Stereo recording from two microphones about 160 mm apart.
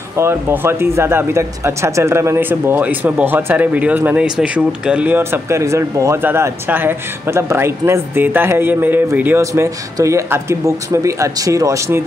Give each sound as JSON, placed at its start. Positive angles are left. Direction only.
{"t": 0.2, "sound": "speech", "side_deg": -15}